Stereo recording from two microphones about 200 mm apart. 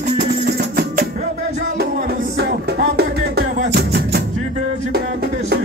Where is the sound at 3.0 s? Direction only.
55° right (ahead or behind).